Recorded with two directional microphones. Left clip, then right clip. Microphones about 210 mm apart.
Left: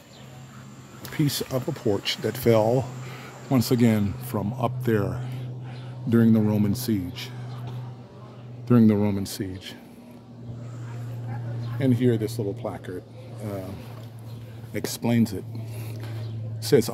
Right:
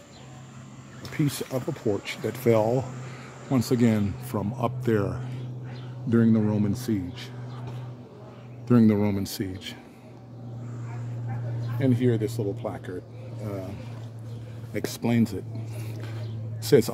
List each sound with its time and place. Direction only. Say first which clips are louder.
1.1 s speech: left 2 dB; 10° left (ahead or behind)
8.6 s speech: left 1 dB; 5° left (ahead or behind)
11.8 s speech: left 1 dB; 10° left (ahead or behind)
14.7 s speech: left 1 dB; centre (ahead or behind)
16.6 s speech: even; 5° right (ahead or behind)